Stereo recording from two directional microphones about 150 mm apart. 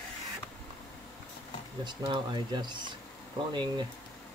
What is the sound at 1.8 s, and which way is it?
Speech, 30° right (ahead or behind).